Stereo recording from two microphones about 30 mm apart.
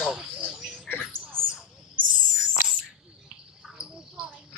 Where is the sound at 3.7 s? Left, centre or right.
Right.